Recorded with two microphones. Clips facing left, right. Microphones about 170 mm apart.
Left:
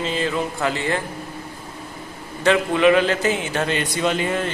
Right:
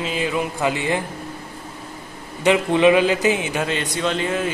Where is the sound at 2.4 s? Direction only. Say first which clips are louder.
Right 1 dB; 20° right (ahead or behind).